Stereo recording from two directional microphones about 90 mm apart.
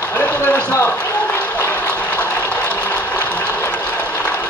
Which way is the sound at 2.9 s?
25° left (ahead or behind).